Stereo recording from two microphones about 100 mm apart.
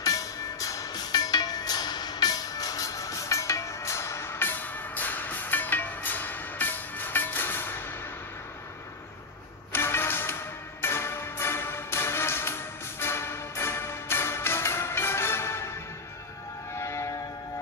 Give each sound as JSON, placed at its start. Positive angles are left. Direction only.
{"t": 0.0, "sound": "music", "side_deg": 35}
{"t": 9.7, "sound": "music", "side_deg": 25}
{"t": 16.7, "sound": "music", "side_deg": 30}